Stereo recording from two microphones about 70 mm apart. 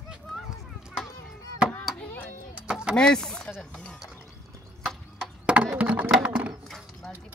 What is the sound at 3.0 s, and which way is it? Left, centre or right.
Speech, centre.